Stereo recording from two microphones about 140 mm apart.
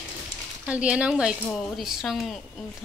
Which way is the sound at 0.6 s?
10° right (ahead or behind).